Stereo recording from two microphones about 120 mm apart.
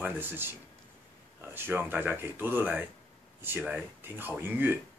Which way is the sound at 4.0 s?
20° right (ahead or behind).